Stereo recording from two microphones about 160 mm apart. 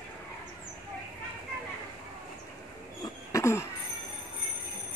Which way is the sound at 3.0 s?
20° left (ahead or behind).